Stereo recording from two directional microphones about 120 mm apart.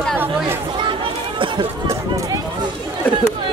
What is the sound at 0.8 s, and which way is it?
Chatter, 45° right (ahead or behind).